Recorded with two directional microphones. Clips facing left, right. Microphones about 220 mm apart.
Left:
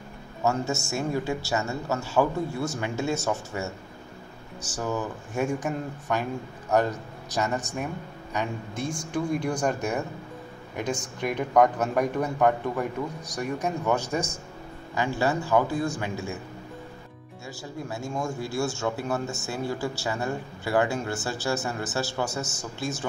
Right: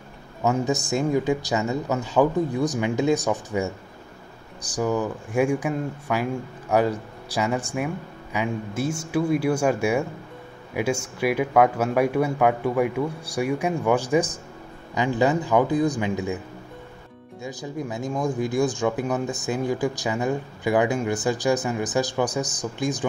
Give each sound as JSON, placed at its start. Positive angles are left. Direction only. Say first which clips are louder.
{"t": 0.5, "sound": "speech", "louder": "right 4 dB", "side_deg": -15}
{"t": 7.3, "sound": "speech", "louder": "right 3 dB", "side_deg": -10}
{"t": 17.4, "sound": "speech", "louder": "right 6 dB", "side_deg": -15}